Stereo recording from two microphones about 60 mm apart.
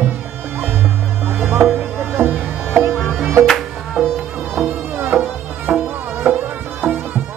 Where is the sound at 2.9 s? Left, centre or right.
Centre.